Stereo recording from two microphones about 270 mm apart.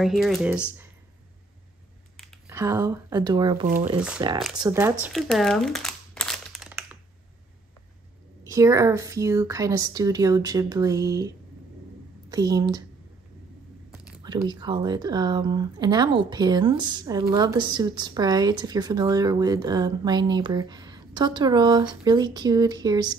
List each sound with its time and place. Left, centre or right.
0.0 s speech: centre
2.4 s a woman's voice: centre
8.5 s a woman's voice: centre
14.2 s a woman's voice: centre